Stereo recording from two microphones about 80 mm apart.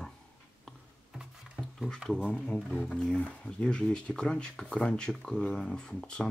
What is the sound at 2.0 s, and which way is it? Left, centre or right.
Speech, centre.